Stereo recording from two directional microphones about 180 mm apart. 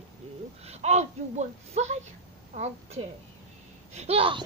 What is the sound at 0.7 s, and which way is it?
Speech, 35° right (ahead or behind).